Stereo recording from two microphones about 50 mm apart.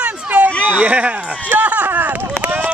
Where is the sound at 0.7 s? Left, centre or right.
Right.